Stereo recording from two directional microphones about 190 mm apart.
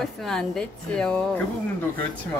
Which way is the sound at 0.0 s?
5° left (ahead or behind).